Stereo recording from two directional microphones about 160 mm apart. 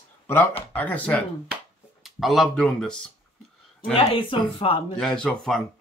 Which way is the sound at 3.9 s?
35° left (ahead or behind).